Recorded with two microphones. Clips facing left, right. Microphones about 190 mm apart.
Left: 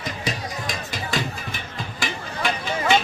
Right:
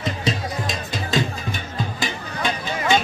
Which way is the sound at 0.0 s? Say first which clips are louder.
Right 4 dB; 25° right (ahead or behind).